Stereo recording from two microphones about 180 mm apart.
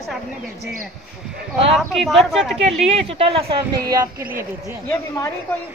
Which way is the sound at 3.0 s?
30° right (ahead or behind).